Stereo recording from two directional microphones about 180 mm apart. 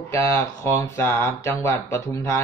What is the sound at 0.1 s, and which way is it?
Speech, 15° left (ahead or behind).